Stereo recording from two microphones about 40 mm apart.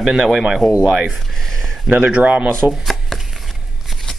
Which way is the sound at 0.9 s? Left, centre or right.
Right.